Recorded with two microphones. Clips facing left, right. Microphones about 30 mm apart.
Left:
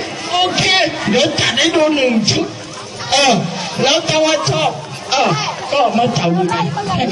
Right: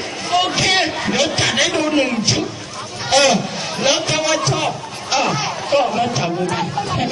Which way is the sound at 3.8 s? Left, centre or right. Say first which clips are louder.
Left 4 dB; centre.